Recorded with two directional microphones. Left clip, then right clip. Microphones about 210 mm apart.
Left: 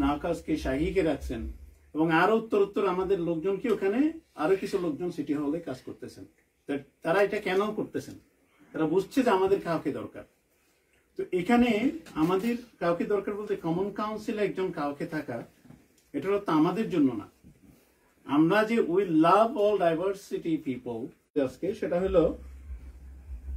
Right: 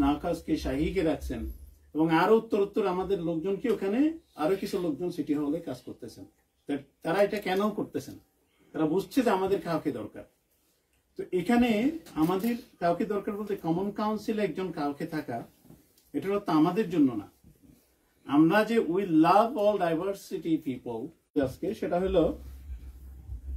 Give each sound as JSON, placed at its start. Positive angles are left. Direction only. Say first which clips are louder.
{"t": 0.0, "sound": "speech", "louder": "even", "side_deg": 0}
{"t": 8.7, "sound": "speech", "louder": "left 1 dB", "side_deg": 0}
{"t": 11.2, "sound": "speech", "louder": "left 1 dB", "side_deg": 0}
{"t": 18.2, "sound": "speech", "louder": "right 1 dB", "side_deg": 0}
{"t": 21.4, "sound": "speech", "louder": "left 1 dB", "side_deg": -20}